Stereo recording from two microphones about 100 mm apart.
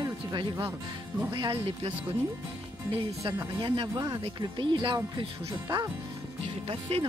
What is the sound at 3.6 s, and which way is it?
Speech, 50° right (ahead or behind).